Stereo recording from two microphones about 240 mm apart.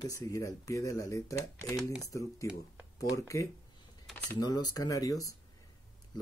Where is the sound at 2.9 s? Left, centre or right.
Centre.